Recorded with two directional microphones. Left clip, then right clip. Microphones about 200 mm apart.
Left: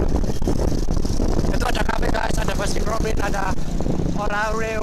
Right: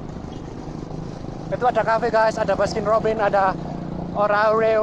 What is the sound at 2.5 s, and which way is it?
Speech, 10° right (ahead or behind).